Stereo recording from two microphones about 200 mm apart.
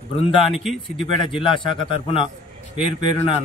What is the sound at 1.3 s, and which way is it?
A man's voice, 25° left (ahead or behind).